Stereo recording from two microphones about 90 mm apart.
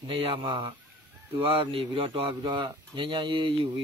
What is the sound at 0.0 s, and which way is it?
Speech, 85° right.